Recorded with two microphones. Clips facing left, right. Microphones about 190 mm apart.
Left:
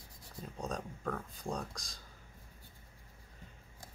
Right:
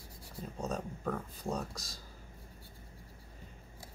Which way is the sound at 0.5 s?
5° right (ahead or behind).